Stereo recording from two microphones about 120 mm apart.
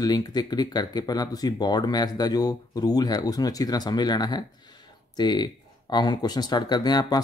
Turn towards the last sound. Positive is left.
turn(degrees=35)  # may be behind; listen again after turning